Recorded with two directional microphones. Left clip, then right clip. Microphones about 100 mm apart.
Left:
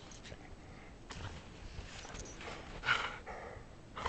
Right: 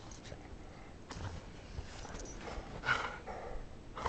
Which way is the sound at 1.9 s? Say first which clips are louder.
Right 1 dB; centre (ahead or behind).